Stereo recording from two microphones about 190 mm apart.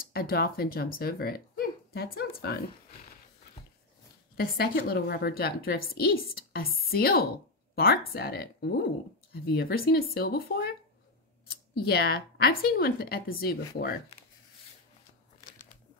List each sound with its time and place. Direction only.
0.0 s speech: 50° left (ahead or behind)
4.4 s speech: 50° left (ahead or behind)